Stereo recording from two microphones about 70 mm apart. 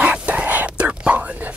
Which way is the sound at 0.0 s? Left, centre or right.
Right.